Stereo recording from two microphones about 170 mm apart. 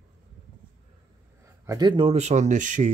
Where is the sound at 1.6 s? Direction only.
25° right (ahead or behind); by 2.9 s 50° right (ahead or behind).